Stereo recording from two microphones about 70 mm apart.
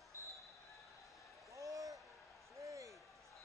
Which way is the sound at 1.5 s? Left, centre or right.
Right.